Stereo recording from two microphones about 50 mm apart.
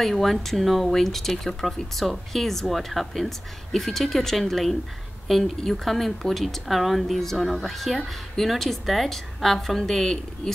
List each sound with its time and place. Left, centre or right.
0.0 s speech: centre